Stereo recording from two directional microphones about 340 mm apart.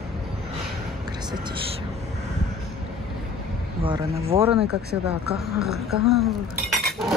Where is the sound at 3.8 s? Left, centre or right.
Centre.